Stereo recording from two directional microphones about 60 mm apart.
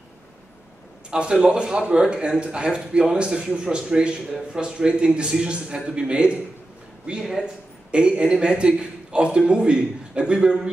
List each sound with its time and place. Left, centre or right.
1.1 s speech: centre